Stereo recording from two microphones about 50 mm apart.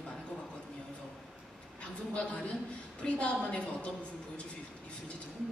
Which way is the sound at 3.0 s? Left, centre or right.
Left.